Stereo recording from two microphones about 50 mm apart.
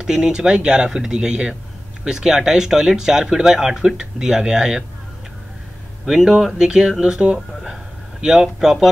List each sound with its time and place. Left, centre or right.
0.0 s speech: centre
6.0 s speech: centre
7.7 s a sound: centre